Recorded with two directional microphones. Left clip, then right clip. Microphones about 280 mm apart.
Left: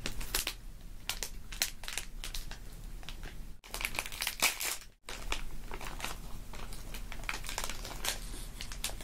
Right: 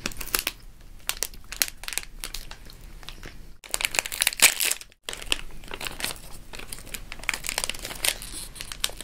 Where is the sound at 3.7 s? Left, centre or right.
Right.